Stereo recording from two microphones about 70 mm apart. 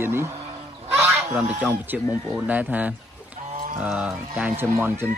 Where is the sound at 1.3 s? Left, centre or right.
Centre.